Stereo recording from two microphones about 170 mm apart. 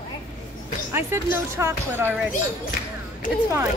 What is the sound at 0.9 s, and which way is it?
Speech, 15° right (ahead or behind).